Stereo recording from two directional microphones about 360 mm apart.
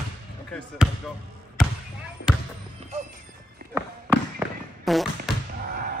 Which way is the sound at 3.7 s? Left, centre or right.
Centre.